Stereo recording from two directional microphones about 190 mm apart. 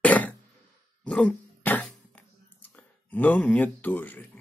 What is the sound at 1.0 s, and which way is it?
Cough, 5° left (ahead or behind).